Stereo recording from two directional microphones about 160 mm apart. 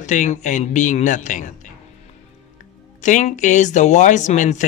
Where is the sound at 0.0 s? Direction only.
50° left (ahead or behind).